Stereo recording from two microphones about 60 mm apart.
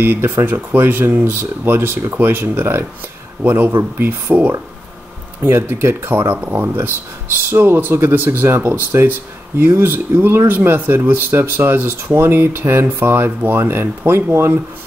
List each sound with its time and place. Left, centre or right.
0.0 s speech: right
5.4 s speech: right